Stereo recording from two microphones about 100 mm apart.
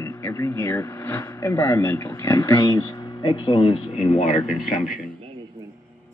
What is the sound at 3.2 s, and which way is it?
Speech, 50° left (ahead or behind).